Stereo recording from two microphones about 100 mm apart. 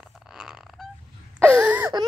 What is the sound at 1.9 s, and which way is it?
Baby cry, 45° right (ahead or behind).